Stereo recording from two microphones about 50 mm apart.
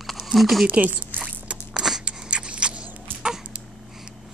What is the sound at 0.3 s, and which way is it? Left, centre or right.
Speech, centre.